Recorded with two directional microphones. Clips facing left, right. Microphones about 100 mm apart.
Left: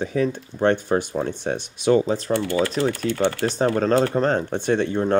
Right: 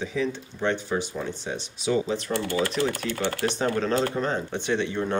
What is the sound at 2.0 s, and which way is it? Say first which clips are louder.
Speech: left 5 dB; 35° left (ahead or behind).